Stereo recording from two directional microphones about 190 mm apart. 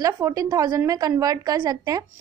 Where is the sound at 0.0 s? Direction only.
20° right (ahead or behind).